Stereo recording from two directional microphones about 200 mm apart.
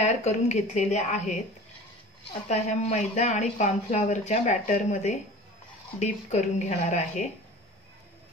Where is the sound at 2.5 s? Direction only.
35° left (ahead or behind).